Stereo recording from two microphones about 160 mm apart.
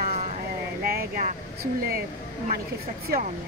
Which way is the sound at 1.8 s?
65° right (ahead or behind).